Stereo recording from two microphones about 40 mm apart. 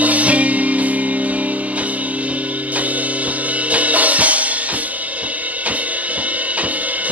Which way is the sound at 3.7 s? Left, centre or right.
Right.